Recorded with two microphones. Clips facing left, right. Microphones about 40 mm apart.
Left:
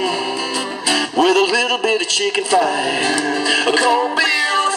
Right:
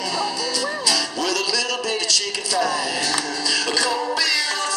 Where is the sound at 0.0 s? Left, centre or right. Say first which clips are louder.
Left 4 dB; left.